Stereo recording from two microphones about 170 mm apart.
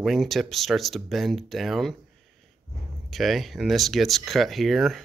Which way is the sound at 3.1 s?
Centre (ahead or behind).